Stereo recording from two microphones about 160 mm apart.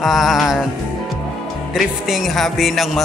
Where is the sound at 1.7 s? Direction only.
Centre (ahead or behind).